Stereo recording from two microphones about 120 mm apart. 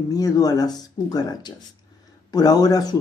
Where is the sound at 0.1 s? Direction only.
30° left (ahead or behind).